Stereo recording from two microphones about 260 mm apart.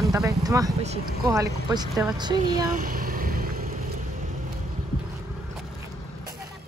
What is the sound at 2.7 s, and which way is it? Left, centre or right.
Vehicle, right.